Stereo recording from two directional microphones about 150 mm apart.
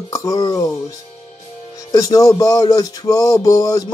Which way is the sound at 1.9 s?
20° left (ahead or behind).